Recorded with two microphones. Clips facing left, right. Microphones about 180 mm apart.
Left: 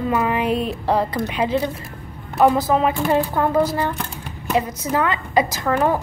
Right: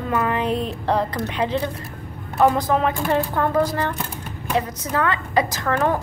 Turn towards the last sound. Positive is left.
turn(degrees=10)  # may be behind; listen again after turning